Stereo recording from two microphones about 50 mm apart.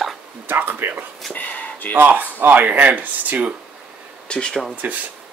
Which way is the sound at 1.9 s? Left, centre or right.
Right.